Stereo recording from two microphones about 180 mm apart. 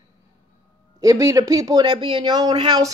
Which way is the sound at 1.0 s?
15° right (ahead or behind).